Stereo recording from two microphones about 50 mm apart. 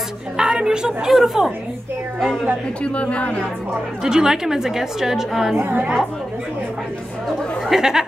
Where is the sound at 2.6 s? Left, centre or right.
Left.